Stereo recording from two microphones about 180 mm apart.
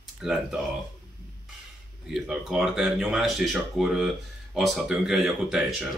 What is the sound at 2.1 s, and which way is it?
Speech, centre (ahead or behind).